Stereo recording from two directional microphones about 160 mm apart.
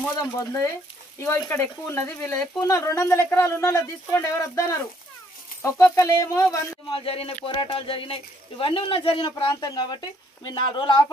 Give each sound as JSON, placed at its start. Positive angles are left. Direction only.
{"t": 0.4, "sound": "speech", "side_deg": 15}
{"t": 6.9, "sound": "speech", "side_deg": 35}